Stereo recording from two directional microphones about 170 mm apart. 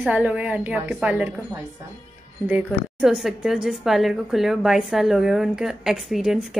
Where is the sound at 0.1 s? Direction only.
10° right (ahead or behind).